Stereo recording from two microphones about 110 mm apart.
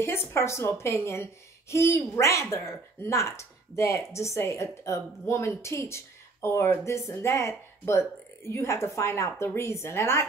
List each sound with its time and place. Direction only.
0.0 s a woman's voice: 20° left (ahead or behind)